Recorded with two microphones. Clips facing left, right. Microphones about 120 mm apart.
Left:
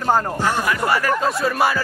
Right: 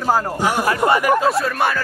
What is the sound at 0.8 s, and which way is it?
Speech, 20° right (ahead or behind).